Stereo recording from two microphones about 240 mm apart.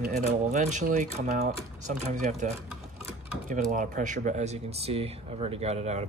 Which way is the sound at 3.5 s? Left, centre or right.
Right.